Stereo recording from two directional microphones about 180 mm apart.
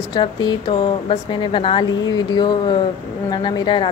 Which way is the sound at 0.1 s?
25° left (ahead or behind).